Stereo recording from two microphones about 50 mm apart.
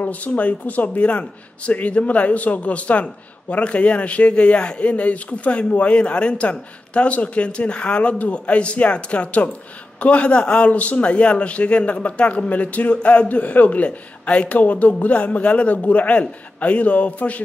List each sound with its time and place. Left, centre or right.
0.0 s speech: left